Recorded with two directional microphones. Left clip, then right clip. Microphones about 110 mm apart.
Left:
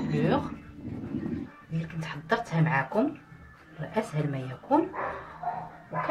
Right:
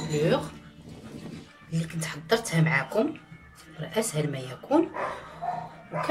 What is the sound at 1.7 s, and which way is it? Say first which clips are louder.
A woman's voice: right 3 dB; 30° left (ahead or behind).